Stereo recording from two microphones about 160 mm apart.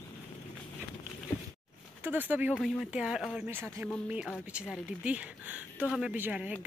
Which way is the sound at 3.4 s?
15° right (ahead or behind).